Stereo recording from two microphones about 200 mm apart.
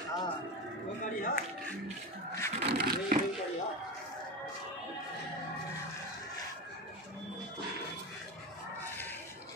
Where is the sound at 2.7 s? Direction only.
50° right (ahead or behind).